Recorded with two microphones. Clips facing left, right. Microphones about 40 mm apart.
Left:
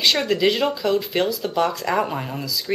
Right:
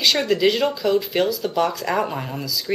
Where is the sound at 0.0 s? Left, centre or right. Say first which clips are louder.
Right 1 dB; centre.